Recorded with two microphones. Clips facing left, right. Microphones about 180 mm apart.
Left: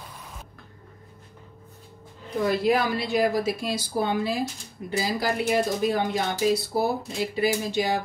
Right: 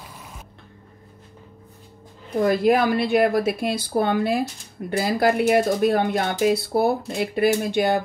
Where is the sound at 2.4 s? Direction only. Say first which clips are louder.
Right 4 dB; 50° right (ahead or behind).